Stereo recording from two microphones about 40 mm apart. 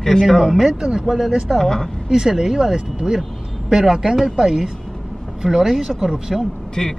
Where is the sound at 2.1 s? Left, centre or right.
Centre.